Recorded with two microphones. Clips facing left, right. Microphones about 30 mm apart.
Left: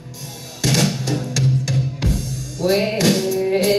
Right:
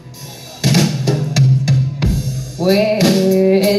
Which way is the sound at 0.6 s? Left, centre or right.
Centre.